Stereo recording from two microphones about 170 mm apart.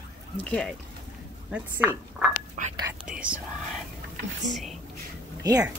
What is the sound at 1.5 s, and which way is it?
Speech, 10° right (ahead or behind).